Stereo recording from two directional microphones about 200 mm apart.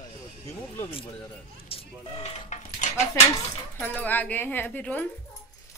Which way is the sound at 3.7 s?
5° left (ahead or behind).